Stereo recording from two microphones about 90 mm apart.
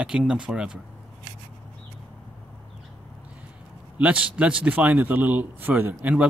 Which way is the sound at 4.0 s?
15° right (ahead or behind).